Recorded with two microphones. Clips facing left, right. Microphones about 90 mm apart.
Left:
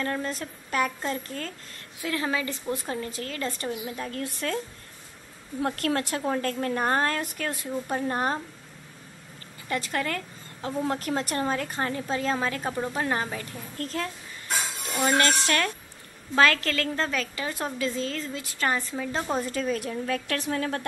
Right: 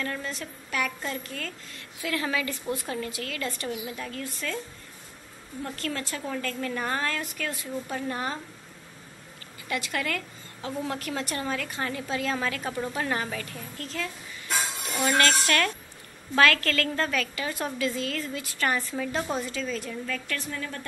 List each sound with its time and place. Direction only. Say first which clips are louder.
0.0 s a woman's voice: left 3 dB; 35° left (ahead or behind)
4.1 s a woman's voice: left 3 dB; 50° left (ahead or behind)
5.7 s a woman's voice: left 6 dB; 55° left (ahead or behind)
9.7 s a woman's voice: left 1 dB; 35° left (ahead or behind)
13.7 s a woman's voice: left 4 dB; 40° left (ahead or behind); by 18.9 s 25° left (ahead or behind)
19.3 s a woman's voice: left 3 dB; 50° left (ahead or behind); by 20.8 s 65° left (ahead or behind)